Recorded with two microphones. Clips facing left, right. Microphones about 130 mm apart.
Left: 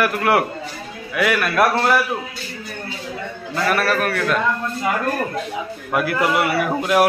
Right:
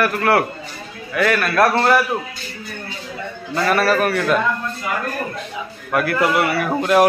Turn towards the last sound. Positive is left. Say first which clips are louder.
# right 2 dB
turn(degrees=5)  # may be behind; listen again after turning